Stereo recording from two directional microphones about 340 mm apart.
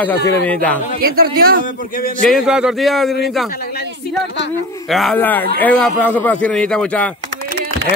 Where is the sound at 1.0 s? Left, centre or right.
Right.